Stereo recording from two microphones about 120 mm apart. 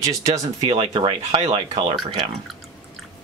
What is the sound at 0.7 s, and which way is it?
Speech, 50° right (ahead or behind).